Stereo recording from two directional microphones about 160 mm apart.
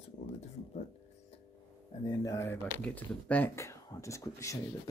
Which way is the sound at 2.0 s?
20° left (ahead or behind).